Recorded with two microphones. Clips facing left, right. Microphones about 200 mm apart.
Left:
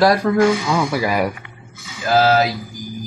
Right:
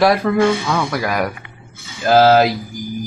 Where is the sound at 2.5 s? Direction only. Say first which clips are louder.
Right 3 dB; 30° right (ahead or behind).